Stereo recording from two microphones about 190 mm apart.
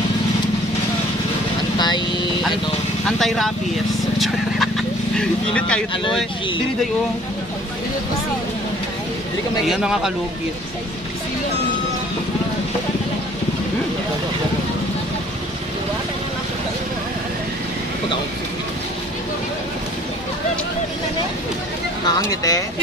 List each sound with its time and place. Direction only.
1.8 s vehicle: 25° left (ahead or behind)
3.1 s speech: centre (ahead or behind)
4.2 s vehicle: centre (ahead or behind)
9.7 s speech: 5° right (ahead or behind)
22.0 s speech: 20° left (ahead or behind)